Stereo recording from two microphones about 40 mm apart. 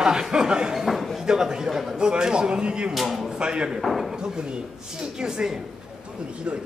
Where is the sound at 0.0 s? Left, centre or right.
Centre.